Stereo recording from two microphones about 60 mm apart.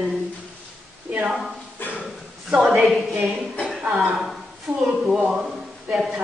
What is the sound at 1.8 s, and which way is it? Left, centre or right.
Dog, left.